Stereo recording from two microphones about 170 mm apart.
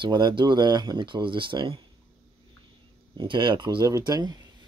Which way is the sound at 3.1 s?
30° right (ahead or behind).